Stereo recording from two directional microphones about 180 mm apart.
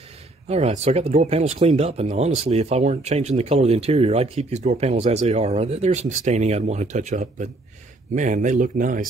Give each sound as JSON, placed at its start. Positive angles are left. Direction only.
{"t": 0.5, "sound": "speech", "side_deg": -35}